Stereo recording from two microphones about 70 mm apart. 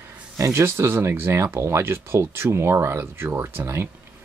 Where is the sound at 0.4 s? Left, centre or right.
Right.